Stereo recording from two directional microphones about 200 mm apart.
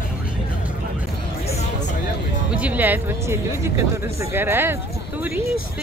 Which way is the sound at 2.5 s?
5° right (ahead or behind).